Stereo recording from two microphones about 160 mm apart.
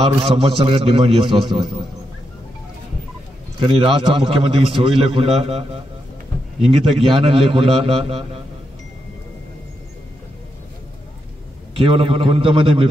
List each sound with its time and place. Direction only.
0.0 s a man's voice: 35° right (ahead or behind)
3.6 s a man's voice: 35° right (ahead or behind)
11.7 s a man's voice: 35° right (ahead or behind)